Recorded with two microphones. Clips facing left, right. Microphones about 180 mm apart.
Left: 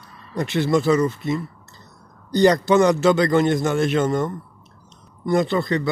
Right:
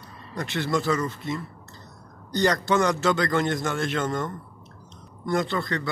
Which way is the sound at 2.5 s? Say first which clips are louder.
Left 7 dB; 20° left (ahead or behind).